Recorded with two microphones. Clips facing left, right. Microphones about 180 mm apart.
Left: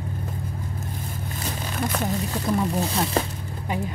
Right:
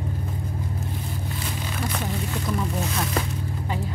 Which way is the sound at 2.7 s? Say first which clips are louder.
Left 3 dB; 30° left (ahead or behind).